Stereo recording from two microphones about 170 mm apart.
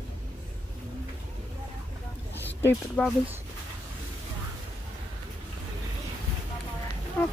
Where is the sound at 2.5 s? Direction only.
10° left (ahead or behind).